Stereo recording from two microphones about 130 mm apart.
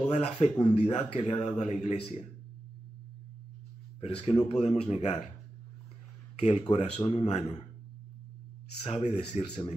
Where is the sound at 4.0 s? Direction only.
50° left (ahead or behind).